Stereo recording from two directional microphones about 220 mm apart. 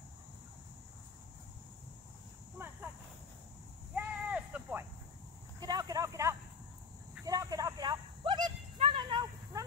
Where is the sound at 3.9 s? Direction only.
5° right (ahead or behind).